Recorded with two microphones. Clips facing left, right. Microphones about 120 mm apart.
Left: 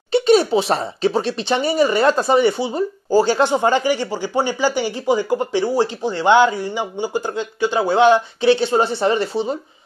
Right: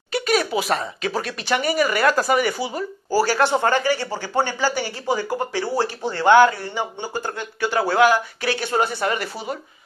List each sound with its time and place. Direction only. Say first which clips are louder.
0.1 s speech: left 7 dB; 25° left (ahead or behind)